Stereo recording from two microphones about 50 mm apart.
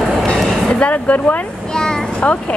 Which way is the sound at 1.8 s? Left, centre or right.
Left.